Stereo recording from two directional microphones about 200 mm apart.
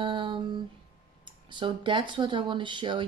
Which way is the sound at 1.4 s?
25° right (ahead or behind).